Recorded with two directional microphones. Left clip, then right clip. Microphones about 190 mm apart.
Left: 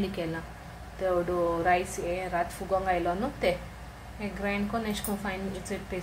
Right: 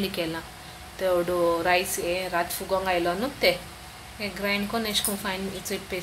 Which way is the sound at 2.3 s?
25° right (ahead or behind).